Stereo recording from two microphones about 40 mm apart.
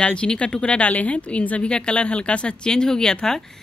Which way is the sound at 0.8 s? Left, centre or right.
Left.